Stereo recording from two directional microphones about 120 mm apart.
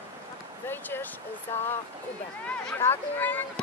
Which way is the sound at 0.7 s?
20° left (ahead or behind).